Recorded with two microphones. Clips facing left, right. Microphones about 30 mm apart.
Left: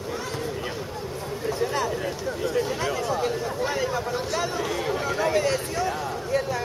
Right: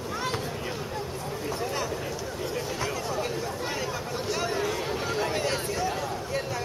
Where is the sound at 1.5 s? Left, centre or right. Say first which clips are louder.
Left 6 dB; left.